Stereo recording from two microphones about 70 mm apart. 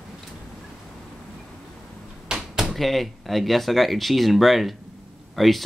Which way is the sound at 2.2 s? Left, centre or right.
Centre.